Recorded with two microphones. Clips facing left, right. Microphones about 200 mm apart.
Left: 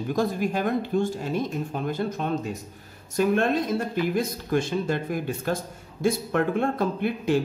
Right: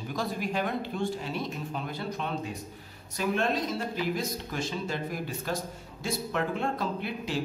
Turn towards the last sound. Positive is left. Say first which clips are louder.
# left 8 dB
turn(degrees=55)  # may be behind; listen again after turning